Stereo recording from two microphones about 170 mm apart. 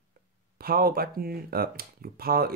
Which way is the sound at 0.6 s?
65° right (ahead or behind).